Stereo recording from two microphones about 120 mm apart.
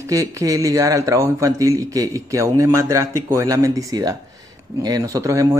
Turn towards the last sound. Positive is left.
turn(degrees=-25)  # may be behind; listen again after turning